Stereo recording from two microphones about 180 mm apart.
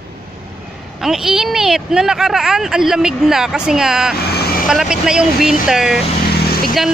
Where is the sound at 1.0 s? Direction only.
5° right (ahead or behind).